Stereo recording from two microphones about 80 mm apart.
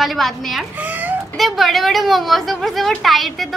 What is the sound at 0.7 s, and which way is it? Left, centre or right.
Chicken, right.